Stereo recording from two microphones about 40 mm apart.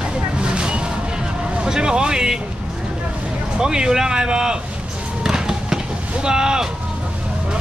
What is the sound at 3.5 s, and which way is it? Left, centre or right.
Speech, centre.